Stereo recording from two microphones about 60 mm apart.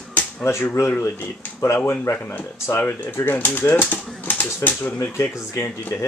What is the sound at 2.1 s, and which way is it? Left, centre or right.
Speech, left.